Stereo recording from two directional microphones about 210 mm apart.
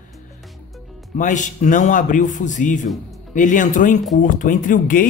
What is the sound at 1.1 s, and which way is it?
A man's voice, 35° left (ahead or behind).